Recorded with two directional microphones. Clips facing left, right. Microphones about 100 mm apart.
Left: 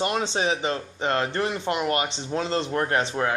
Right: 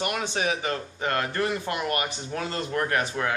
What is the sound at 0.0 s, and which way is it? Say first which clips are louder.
Speech: left 3 dB; 25° left (ahead or behind).